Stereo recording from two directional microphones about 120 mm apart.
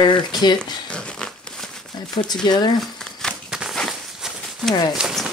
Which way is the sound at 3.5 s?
5° right (ahead or behind).